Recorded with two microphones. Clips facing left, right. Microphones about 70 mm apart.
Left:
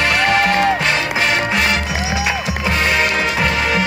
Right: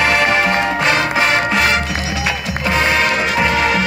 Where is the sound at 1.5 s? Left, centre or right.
Centre.